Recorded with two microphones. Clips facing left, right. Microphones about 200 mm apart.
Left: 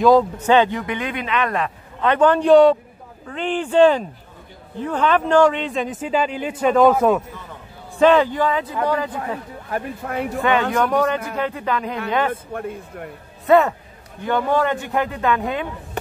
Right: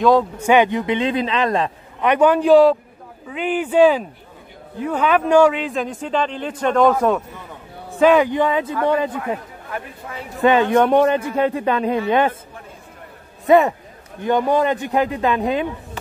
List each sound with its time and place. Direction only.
0.0 s a man's voice: centre (ahead or behind)
0.4 s a man's voice: 15° right (ahead or behind); by 1.7 s 30° right (ahead or behind)
2.0 s a man's voice: 10° right (ahead or behind); by 7.2 s 5° left (ahead or behind)
8.0 s a man's voice: 10° right (ahead or behind)
10.0 s speech: 60° left (ahead or behind)
10.4 s a man's voice: 20° right (ahead or behind)
13.5 s a man's voice: 15° right (ahead or behind)